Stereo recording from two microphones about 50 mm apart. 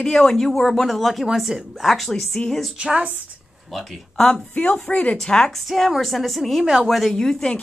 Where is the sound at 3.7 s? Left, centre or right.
Centre.